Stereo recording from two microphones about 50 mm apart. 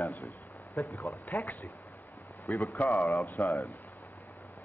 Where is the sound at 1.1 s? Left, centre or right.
Left.